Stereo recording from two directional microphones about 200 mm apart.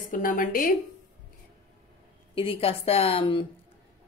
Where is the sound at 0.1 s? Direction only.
40° left (ahead or behind).